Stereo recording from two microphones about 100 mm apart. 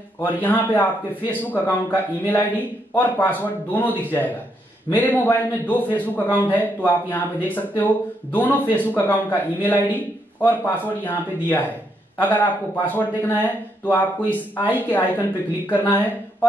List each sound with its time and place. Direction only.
0.2 s a man's voice: 20° left (ahead or behind)